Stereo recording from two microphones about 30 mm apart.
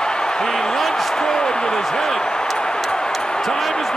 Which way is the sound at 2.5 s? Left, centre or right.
Left.